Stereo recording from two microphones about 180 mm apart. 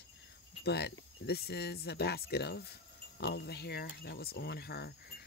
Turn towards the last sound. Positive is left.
turn(degrees=60)  # may be behind; listen again after turning